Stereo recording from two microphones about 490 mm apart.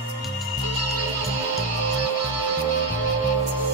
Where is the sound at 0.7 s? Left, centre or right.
Left.